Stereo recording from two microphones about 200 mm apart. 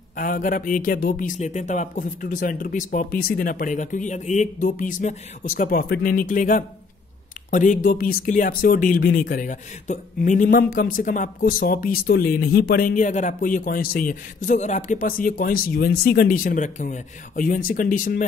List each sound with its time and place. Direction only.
0.1 s speech: 40° left (ahead or behind)